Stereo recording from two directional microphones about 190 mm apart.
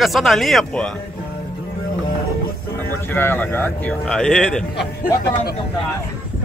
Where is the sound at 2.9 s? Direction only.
10° left (ahead or behind).